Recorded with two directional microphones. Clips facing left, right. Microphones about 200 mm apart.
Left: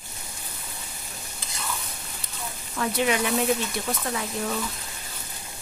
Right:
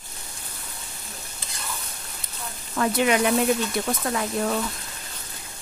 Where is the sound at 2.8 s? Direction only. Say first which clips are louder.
Right 4 dB; 50° right (ahead or behind).